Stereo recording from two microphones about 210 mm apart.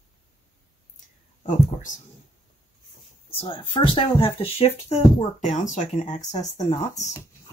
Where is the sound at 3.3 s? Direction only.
25° left (ahead or behind).